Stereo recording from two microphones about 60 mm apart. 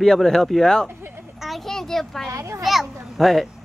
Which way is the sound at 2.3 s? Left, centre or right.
Right.